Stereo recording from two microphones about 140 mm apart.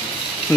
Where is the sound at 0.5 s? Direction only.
15° left (ahead or behind).